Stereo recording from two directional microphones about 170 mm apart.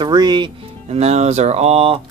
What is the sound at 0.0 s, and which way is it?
Speech, 25° right (ahead or behind).